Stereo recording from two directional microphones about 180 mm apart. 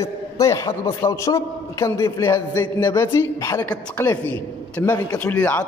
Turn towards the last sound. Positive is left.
turn(degrees=10)  # may be behind; listen again after turning